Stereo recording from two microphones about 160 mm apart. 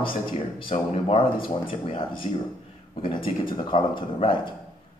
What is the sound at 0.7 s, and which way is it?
Speech, 35° left (ahead or behind).